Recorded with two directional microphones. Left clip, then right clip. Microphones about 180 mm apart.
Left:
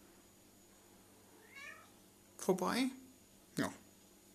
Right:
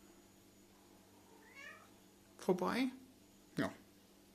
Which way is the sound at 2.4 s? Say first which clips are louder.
Left 1 dB; centre (ahead or behind).